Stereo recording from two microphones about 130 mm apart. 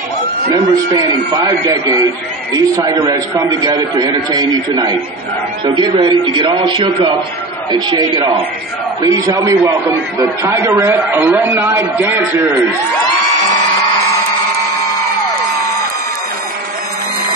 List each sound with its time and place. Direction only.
0.5 s a man's voice: 30° right (ahead or behind)